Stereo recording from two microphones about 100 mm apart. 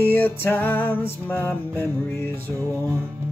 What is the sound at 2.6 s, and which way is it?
Music, 30° right (ahead or behind).